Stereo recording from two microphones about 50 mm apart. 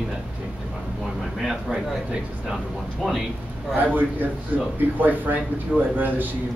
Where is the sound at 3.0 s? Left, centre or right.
Centre.